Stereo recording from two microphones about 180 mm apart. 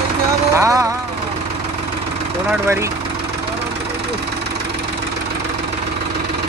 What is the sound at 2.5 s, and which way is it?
Speech, 15° right (ahead or behind).